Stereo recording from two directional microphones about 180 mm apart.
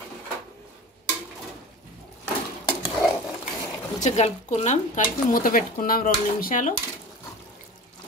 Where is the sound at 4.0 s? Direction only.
40° left (ahead or behind).